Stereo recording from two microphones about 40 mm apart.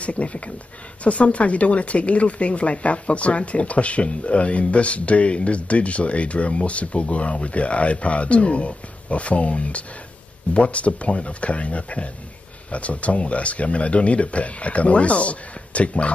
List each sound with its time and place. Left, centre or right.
0.0 s speech: left